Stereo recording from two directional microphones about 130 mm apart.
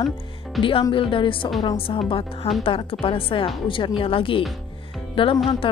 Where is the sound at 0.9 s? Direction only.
40° left (ahead or behind).